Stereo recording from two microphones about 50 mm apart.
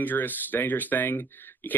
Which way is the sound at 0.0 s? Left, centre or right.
Left.